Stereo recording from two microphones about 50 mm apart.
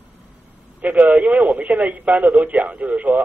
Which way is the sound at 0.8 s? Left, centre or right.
Right.